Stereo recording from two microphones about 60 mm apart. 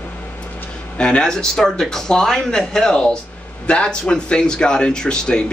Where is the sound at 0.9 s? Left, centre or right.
Centre.